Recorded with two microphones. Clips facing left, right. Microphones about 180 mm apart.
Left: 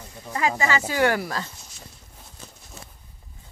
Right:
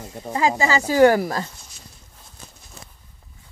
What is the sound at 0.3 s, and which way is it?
Speech, 30° right (ahead or behind).